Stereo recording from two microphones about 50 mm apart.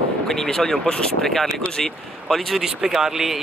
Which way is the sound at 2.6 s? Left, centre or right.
Centre.